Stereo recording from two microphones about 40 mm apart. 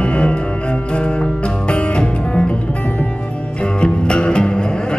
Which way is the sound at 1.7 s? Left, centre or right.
Left.